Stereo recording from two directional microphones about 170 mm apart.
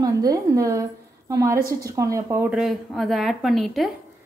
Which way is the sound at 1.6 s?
65° right (ahead or behind).